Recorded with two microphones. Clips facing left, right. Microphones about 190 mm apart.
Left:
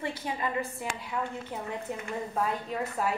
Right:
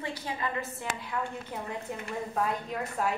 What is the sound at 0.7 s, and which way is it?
A woman's voice, 5° left (ahead or behind).